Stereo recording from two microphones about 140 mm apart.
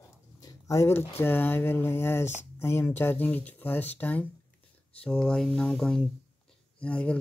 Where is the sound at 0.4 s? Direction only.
25° left (ahead or behind).